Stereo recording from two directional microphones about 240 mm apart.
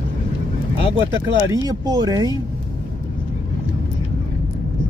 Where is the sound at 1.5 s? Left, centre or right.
Centre.